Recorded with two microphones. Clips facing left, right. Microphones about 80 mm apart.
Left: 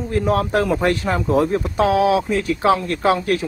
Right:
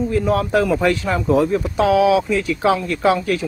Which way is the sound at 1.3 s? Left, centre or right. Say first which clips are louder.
Right 2 dB; left.